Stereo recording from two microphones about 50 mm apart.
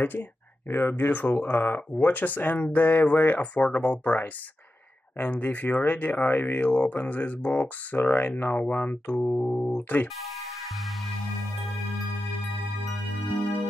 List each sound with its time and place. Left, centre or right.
0.0 s a sound: left
0.8 s speech: left
5.4 s speech: left
9.4 s speech: left
9.7 s speech: left
10.2 s music: centre